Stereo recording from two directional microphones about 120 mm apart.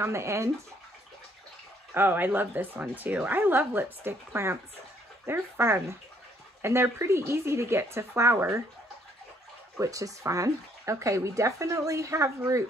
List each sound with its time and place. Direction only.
0.0 s speech: 25° right (ahead or behind)
2.0 s speech: 20° right (ahead or behind)
9.8 s speech: 30° right (ahead or behind)